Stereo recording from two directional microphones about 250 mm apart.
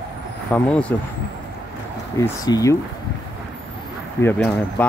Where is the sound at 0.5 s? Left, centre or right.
Centre.